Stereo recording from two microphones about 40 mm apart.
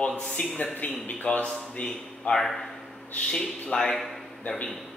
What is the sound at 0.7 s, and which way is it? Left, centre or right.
Speech, left.